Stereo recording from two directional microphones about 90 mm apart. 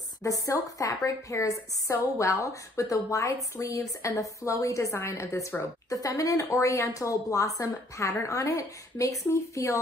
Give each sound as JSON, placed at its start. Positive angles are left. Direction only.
{"t": 0.2, "sound": "a woman's voice", "side_deg": 35}
{"t": 5.9, "sound": "a woman's voice", "side_deg": 40}